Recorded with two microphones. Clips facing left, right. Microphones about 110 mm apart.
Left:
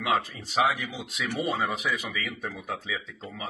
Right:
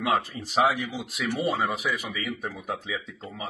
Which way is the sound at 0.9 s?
5° right (ahead or behind).